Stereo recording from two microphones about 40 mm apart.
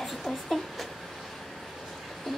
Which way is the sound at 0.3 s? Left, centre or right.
Centre.